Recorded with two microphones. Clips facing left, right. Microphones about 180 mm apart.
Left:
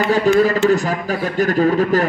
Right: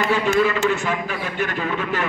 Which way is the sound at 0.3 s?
40° left (ahead or behind).